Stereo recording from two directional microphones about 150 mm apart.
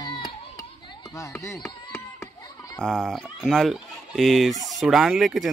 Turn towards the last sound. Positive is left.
turn(degrees=0)  # may be behind; listen again after turning